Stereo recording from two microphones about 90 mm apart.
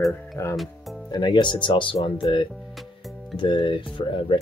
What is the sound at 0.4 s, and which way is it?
Speech, 30° left (ahead or behind).